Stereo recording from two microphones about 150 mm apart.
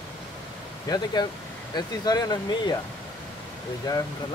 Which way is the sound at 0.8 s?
25° left (ahead or behind).